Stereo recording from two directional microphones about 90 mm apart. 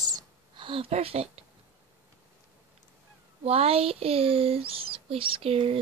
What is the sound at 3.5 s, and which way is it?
Speech, 90° right.